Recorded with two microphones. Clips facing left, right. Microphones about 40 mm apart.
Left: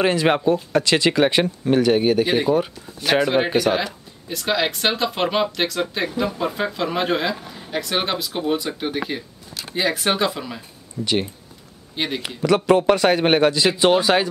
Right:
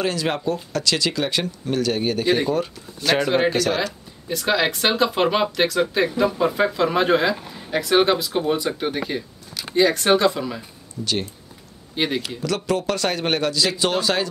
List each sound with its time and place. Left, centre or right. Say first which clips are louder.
0.0 s speech: left 5 dB; left
2.0 s speech: left 2 dB; centre
4.3 s speech: right 1 dB; centre
11.0 s speech: left 1 dB; left
11.9 s speech: right 2 dB; centre
12.4 s speech: left 10 dB; left